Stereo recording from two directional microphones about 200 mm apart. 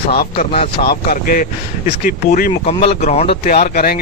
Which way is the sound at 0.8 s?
45° left (ahead or behind).